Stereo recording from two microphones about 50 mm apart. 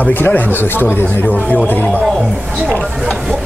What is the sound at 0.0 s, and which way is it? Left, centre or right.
Speech, left.